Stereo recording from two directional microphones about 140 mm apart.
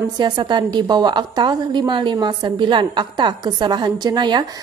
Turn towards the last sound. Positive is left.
turn(degrees=-30)  # may be behind; listen again after turning